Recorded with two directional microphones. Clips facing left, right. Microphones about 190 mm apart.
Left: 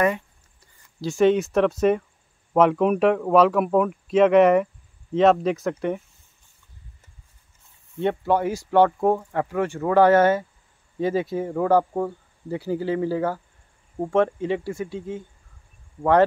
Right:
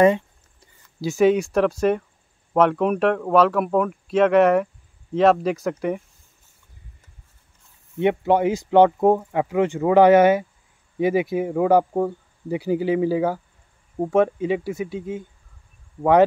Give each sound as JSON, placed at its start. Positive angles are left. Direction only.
{"t": 1.0, "sound": "speech", "side_deg": -5}
{"t": 8.0, "sound": "speech", "side_deg": -15}